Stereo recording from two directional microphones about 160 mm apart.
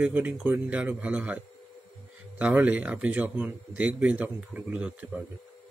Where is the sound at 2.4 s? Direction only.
10° right (ahead or behind).